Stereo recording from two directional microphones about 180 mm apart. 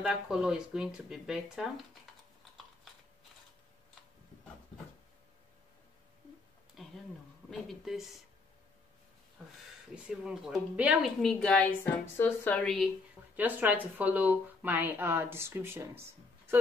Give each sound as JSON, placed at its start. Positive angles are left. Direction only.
{"t": 0.0, "sound": "a woman's voice", "side_deg": -5}
{"t": 6.8, "sound": "a sound", "side_deg": 0}
{"t": 7.4, "sound": "a woman's voice", "side_deg": 0}
{"t": 10.0, "sound": "a woman's voice", "side_deg": -5}
{"t": 13.4, "sound": "speech", "side_deg": -10}